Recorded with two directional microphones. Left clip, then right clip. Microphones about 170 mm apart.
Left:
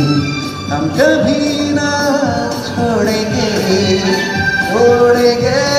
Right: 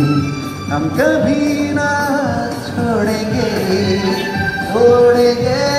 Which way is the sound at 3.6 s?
20° left (ahead or behind).